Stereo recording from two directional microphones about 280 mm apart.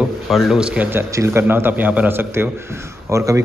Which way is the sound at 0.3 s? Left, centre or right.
Centre.